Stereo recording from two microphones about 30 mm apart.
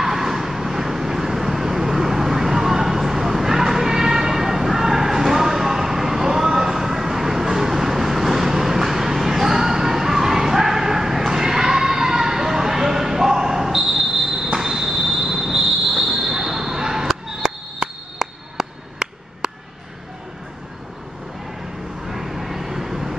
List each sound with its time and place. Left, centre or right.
0.0 s vehicle: centre
18.2 s a sound: centre
22.0 s vehicle: centre